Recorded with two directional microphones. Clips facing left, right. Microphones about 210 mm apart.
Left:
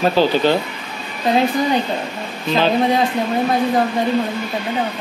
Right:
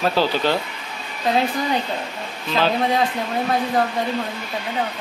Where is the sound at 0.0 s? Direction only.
20° left (ahead or behind).